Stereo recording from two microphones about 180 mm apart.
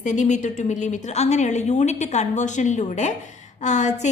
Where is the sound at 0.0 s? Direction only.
45° left (ahead or behind).